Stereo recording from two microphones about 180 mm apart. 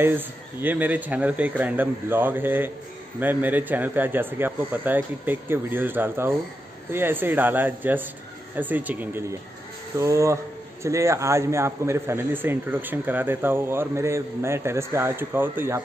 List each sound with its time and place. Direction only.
0.0 s a man's voice: 10° right (ahead or behind)